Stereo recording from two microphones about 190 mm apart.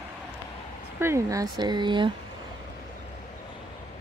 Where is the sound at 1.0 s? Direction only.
15° right (ahead or behind).